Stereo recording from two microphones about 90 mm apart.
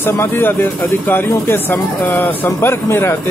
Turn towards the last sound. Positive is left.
turn(degrees=25)  # may be behind; listen again after turning